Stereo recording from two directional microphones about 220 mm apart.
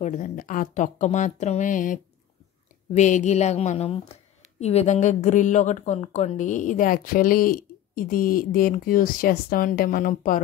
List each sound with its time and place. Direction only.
0.0 s a woman's voice: 35° left (ahead or behind)
3.0 s a woman's voice: 35° left (ahead or behind)